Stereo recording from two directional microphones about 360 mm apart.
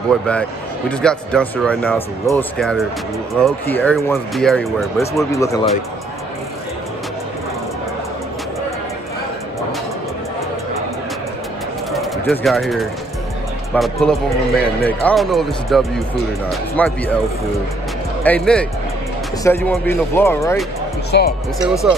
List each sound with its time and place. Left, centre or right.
0.1 s speech: centre
11.9 s bird: centre
13.7 s speech: centre
18.2 s speech: centre
21.1 s speech: left